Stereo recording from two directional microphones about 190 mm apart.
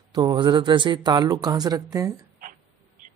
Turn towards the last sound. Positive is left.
turn(degrees=-45)  # may be behind; listen again after turning